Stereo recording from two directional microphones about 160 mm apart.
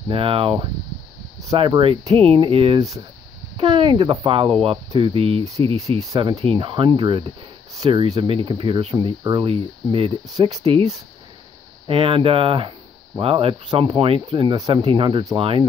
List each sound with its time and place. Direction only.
0.1 s speech: 35° right (ahead or behind)
11.9 s speech: 35° right (ahead or behind)
14.5 s speech: 25° right (ahead or behind)